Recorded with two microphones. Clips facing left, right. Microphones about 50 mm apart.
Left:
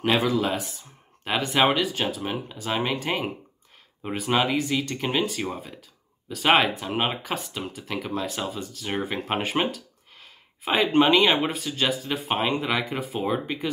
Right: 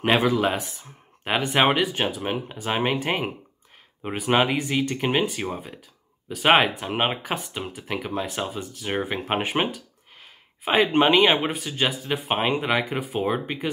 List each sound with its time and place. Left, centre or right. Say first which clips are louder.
0.0 s speech: right 2 dB; right